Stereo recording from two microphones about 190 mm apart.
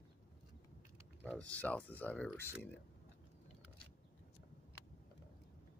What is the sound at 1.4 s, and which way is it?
Speech, 5° left (ahead or behind).